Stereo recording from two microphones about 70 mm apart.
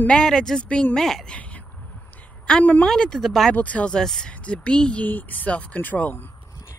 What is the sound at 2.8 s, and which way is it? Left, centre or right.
Speech, centre.